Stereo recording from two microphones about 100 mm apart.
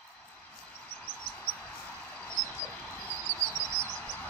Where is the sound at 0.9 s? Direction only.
10° left (ahead or behind).